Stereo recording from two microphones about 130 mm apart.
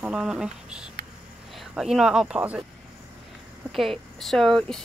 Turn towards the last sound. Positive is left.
turn(degrees=5)  # may be behind; listen again after turning